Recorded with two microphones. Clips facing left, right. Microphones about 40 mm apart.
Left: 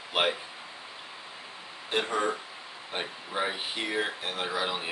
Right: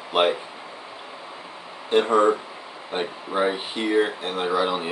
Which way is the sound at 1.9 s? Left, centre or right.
Centre.